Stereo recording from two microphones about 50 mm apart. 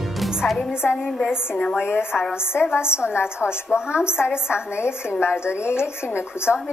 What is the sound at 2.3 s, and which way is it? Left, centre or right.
A woman's voice, left.